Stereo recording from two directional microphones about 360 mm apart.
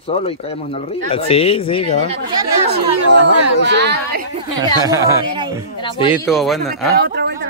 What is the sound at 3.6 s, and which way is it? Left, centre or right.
Speech, right.